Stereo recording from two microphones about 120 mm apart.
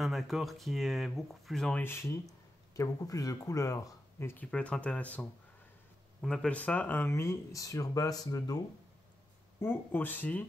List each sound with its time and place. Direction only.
0.0 s speech: centre (ahead or behind)
1.8 s speech: 20° left (ahead or behind)
6.2 s speech: 5° left (ahead or behind); by 8.5 s 30° left (ahead or behind)
9.6 s speech: 15° left (ahead or behind)